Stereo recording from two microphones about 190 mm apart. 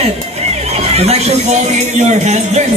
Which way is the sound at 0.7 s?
35° right (ahead or behind).